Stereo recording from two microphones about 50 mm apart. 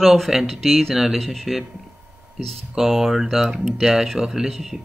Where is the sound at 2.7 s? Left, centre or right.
Centre.